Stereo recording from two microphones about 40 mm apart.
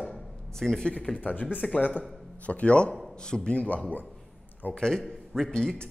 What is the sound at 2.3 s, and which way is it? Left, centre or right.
Speech, left.